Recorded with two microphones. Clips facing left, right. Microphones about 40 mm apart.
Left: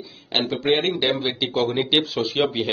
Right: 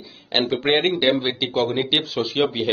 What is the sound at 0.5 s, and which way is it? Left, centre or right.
Speech, right.